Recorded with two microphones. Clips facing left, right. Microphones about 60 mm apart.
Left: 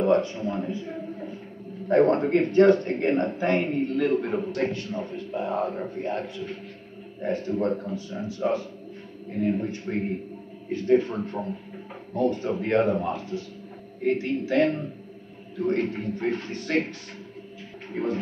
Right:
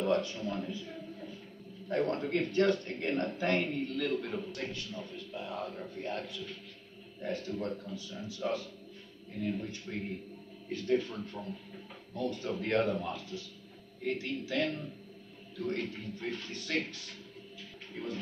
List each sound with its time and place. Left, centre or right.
0.0 s a man's voice: left
17.9 s speech: left